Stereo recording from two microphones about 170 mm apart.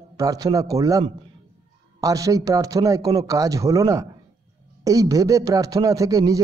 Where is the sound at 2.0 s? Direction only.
20° right (ahead or behind).